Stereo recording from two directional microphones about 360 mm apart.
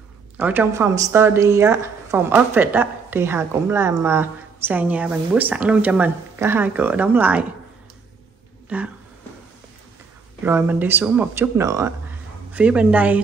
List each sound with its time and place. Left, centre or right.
0.4 s a woman's voice: centre
8.6 s speech: centre
10.4 s a woman's voice: centre